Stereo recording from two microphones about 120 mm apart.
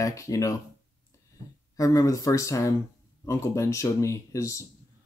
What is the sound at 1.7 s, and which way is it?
Speech, 30° left (ahead or behind).